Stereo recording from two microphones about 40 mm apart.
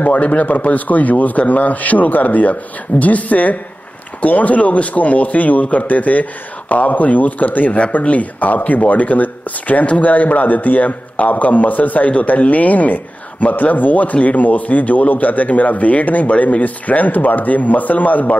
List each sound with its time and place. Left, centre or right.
0.0 s speech: left